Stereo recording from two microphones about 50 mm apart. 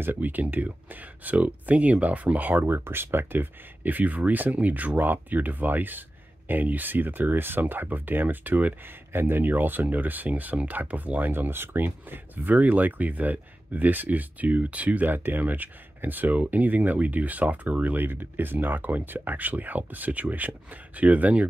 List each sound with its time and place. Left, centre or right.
0.2 s speech: right
2.6 s speech: right